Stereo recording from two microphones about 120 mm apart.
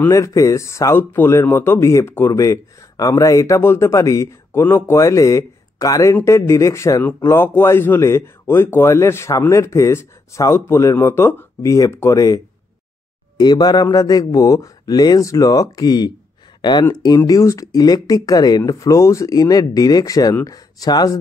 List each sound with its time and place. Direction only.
0.1 s speech: 25° left (ahead or behind)
13.4 s speech: 35° left (ahead or behind)